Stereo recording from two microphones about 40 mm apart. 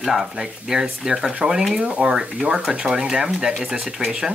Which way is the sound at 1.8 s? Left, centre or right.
Right.